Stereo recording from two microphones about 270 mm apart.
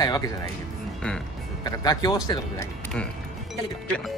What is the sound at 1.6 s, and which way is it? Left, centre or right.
Speech, centre.